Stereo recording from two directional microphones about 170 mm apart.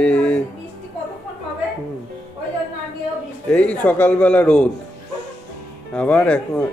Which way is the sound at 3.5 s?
10° left (ahead or behind).